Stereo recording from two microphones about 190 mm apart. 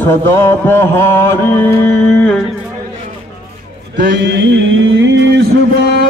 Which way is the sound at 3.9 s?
70° right (ahead or behind).